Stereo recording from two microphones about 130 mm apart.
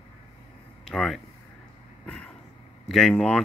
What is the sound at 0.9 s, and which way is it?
Speech, centre (ahead or behind).